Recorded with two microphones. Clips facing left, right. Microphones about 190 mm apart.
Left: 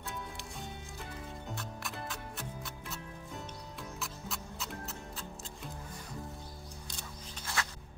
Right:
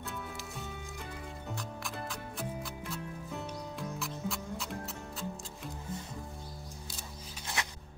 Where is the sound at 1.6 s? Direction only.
Centre (ahead or behind).